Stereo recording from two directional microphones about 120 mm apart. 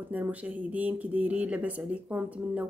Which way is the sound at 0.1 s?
15° right (ahead or behind).